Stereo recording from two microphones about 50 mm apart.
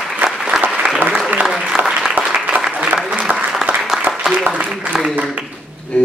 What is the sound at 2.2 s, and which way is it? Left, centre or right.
Applause, right.